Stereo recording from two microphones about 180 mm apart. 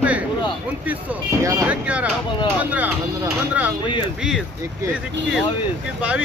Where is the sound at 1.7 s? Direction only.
5° right (ahead or behind).